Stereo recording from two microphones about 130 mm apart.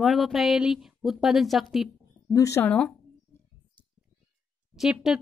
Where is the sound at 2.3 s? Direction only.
25° left (ahead or behind).